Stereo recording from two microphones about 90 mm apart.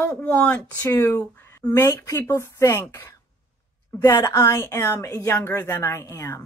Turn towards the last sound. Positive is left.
turn(degrees=30)  # may be behind; listen again after turning